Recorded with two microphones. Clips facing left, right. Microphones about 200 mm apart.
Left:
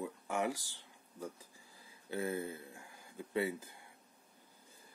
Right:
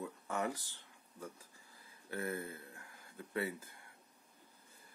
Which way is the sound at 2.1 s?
15° left (ahead or behind).